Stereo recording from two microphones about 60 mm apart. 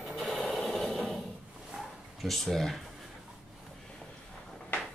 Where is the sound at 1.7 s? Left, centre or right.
Centre.